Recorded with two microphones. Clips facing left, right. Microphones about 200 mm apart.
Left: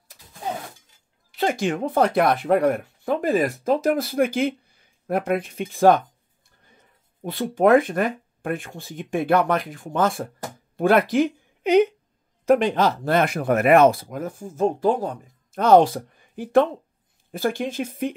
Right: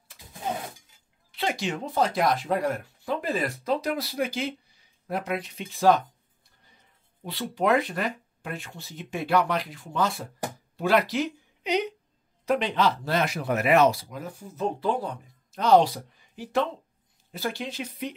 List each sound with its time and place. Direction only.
1.3 s speech: 45° left (ahead or behind)
7.2 s speech: 50° left (ahead or behind)